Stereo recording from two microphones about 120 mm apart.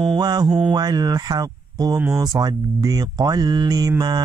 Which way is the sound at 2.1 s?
35° right (ahead or behind).